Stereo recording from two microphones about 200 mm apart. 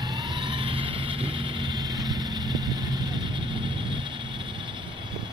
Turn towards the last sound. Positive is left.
turn(degrees=-25)  # may be behind; listen again after turning